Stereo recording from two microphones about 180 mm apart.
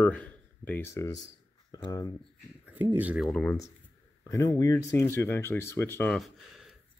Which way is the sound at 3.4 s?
15° left (ahead or behind).